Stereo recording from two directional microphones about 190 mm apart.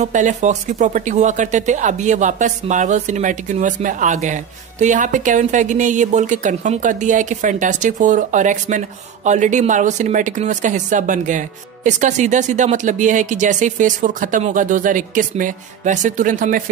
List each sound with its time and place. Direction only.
0.0 s speech: 40° right (ahead or behind)